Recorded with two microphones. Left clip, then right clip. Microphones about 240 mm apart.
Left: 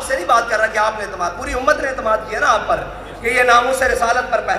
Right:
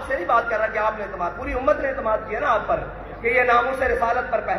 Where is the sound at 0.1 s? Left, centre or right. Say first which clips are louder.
Left 5 dB; left.